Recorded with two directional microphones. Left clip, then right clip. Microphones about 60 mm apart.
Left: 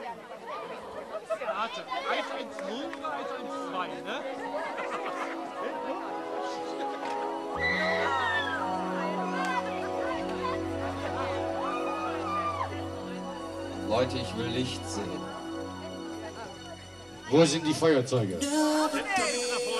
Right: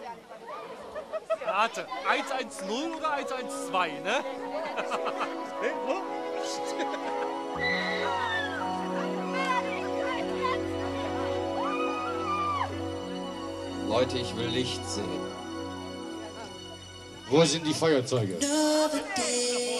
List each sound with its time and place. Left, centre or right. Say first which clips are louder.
1.6 s speech: right 4 dB; right
6.4 s speech: right 2 dB; right
7.6 s music: left 2 dB; centre
9.5 s music: right 2 dB; centre
13.8 s speech: right 1 dB; centre
17.3 s a man's voice: even; centre
18.9 s music: left 3 dB; left
19.3 s music: right 1 dB; centre